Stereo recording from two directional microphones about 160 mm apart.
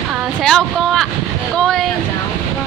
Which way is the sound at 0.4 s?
Centre (ahead or behind).